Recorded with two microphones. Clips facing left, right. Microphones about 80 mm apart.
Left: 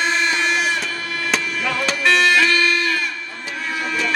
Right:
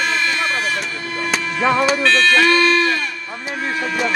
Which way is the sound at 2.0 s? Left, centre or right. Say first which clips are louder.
Left 3 dB; centre.